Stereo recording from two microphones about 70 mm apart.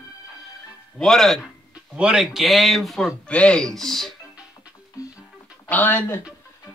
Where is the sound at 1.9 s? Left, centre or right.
Centre.